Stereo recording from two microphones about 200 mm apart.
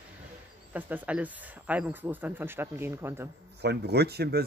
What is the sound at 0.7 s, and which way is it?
Speech, 10° right (ahead or behind).